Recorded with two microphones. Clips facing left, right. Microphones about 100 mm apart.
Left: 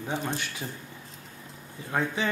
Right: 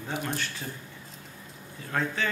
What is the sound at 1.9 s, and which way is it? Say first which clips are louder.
Speech: left 1 dB; 15° left (ahead or behind).